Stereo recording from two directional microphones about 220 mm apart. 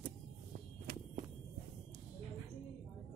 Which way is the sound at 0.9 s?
40° right (ahead or behind).